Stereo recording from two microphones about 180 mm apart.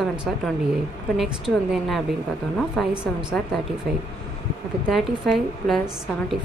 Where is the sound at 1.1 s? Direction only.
Centre (ahead or behind).